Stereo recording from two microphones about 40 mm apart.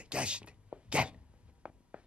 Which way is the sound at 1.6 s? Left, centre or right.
Right.